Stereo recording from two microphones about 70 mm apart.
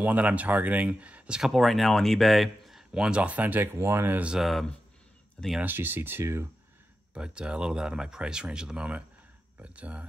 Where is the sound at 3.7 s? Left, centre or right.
Right.